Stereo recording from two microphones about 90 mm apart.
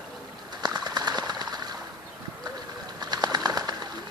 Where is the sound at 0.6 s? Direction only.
45° right (ahead or behind).